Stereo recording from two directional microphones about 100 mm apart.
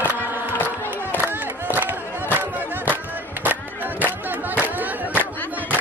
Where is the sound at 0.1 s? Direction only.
20° right (ahead or behind).